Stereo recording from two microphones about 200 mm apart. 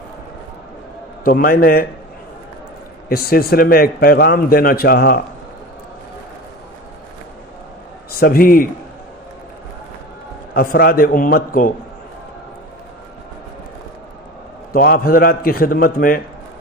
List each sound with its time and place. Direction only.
1.2 s a man's voice: 45° left (ahead or behind)
3.1 s a man's voice: 50° left (ahead or behind)
8.2 s a man's voice: 45° left (ahead or behind)
10.5 s a man's voice: 45° left (ahead or behind)
14.7 s a man's voice: 45° left (ahead or behind)